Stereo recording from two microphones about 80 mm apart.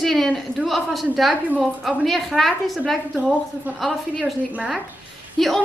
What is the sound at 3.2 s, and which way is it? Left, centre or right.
Speech, centre.